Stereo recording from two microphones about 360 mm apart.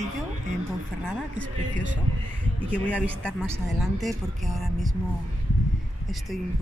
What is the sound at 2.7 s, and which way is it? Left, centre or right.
Speech, centre.